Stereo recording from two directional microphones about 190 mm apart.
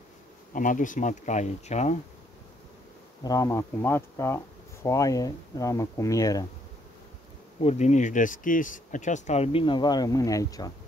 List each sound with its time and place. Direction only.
0.5 s speech: 45° left (ahead or behind)
3.3 s speech: 15° left (ahead or behind)
7.6 s speech: 35° left (ahead or behind); by 10.7 s 20° left (ahead or behind)